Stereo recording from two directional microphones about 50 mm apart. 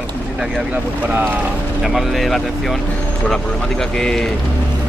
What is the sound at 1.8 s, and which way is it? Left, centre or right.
Speech, centre.